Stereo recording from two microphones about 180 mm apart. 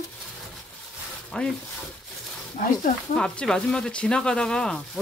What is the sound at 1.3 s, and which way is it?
Speech, 5° left (ahead or behind).